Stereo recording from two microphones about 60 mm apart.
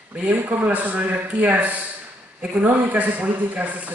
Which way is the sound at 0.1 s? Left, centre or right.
Right.